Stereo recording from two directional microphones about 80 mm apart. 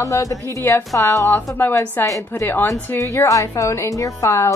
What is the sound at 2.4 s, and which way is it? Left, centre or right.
Speech, left.